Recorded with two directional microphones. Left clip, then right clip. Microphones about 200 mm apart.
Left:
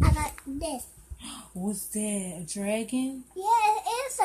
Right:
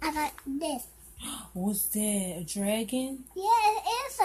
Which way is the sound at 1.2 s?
20° right (ahead or behind).